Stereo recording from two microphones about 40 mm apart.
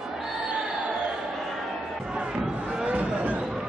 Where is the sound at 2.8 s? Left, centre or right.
Right.